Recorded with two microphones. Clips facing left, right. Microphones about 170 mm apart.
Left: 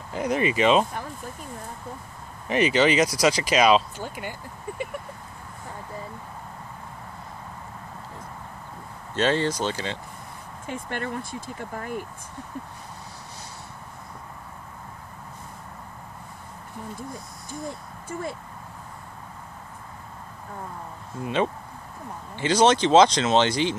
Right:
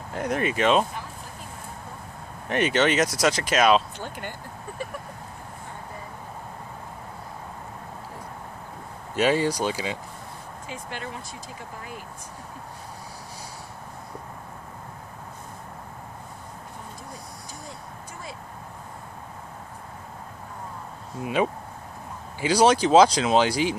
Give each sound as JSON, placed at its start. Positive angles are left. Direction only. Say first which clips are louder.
{"t": 0.1, "sound": "speech", "louder": "left 2 dB", "side_deg": 0}
{"t": 2.4, "sound": "speech", "louder": "left 2 dB", "side_deg": 0}
{"t": 9.1, "sound": "speech", "louder": "right 1 dB", "side_deg": -10}
{"t": 10.7, "sound": "speech", "louder": "left 5 dB", "side_deg": 55}
{"t": 21.2, "sound": "speech", "louder": "right 1 dB", "side_deg": -10}